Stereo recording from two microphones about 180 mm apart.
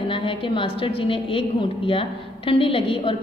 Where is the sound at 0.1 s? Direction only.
30° left (ahead or behind).